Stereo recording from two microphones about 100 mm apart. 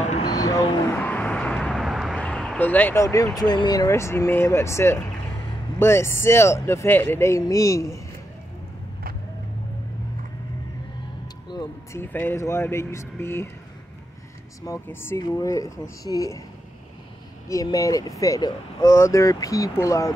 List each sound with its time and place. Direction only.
0.3 s vehicle: 35° left (ahead or behind)
0.8 s vehicle: 15° left (ahead or behind); by 2.1 s centre (ahead or behind)
2.1 s vehicle: 10° left (ahead or behind)
2.6 s speech: 20° left (ahead or behind)
3.0 s speech: 30° left (ahead or behind)
3.3 s speech: 45° left (ahead or behind)
3.9 s speech: 25° left (ahead or behind)
11.9 s speech: 20° left (ahead or behind)
14.9 s speech: 25° left (ahead or behind)
15.3 s speech: 35° left (ahead or behind)
17.5 s speech: 35° left (ahead or behind)